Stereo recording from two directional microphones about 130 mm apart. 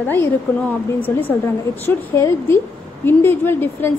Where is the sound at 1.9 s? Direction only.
15° left (ahead or behind).